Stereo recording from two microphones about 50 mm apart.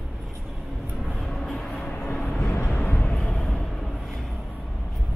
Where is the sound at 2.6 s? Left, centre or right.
Left.